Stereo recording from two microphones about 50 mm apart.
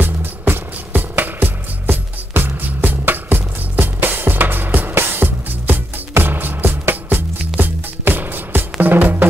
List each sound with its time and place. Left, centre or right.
0.0 s music: right